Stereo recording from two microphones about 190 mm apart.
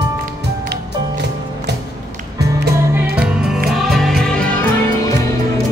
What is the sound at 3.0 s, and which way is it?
Music, 55° right (ahead or behind).